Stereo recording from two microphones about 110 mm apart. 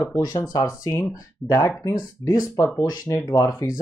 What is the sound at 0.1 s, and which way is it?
Speech, 35° left (ahead or behind).